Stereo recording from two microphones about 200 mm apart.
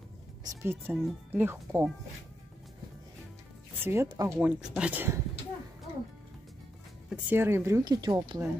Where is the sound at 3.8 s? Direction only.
15° right (ahead or behind).